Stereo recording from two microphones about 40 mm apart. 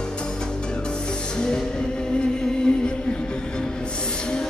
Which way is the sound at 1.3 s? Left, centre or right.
Left.